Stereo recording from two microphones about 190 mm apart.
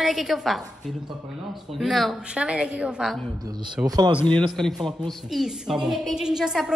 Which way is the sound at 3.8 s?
20° right (ahead or behind).